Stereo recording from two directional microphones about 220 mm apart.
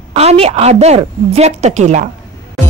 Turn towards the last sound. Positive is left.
turn(degrees=-30)  # may be behind; listen again after turning